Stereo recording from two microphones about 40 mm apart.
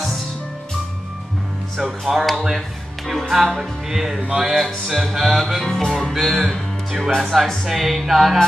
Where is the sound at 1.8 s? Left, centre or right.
Centre.